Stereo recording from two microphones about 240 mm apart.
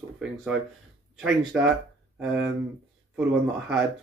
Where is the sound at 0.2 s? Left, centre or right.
Centre.